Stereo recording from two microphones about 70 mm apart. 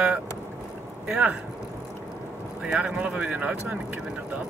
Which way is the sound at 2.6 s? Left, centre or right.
Centre.